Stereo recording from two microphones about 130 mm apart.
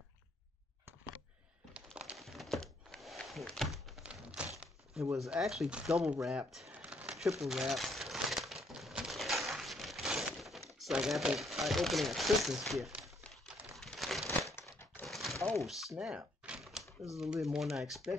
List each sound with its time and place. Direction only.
2.0 s a sound: 5° right (ahead or behind)
5.1 s speech: centre (ahead or behind)
6.7 s crumpling: 10° right (ahead or behind)
10.8 s speech: 5° right (ahead or behind)
13.7 s a sound: centre (ahead or behind)
15.4 s speech: centre (ahead or behind)
16.0 s typewriter: 10° right (ahead or behind)
17.2 s speech: 5° right (ahead or behind)